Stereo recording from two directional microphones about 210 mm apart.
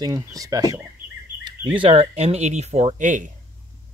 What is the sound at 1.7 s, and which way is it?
Speech, 30° right (ahead or behind).